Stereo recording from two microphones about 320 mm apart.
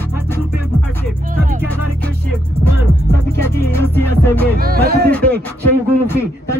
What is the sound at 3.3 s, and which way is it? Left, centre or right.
Music, centre.